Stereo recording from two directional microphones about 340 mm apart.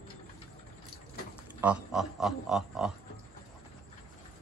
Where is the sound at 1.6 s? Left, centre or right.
Centre.